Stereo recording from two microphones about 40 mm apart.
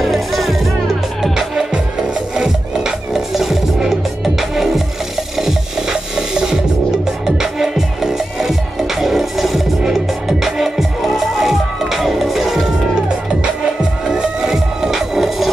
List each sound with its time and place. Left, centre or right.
0.0 s music: centre